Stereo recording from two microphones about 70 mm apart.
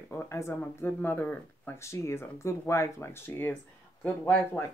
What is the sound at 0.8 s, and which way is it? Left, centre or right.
Speech, left.